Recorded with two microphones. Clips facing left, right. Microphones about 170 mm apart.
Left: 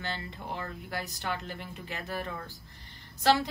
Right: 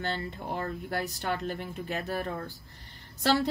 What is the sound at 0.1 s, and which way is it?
Speech, 50° right (ahead or behind).